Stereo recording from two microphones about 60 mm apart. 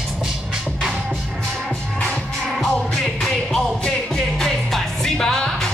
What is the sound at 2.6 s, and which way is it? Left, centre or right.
Music, centre.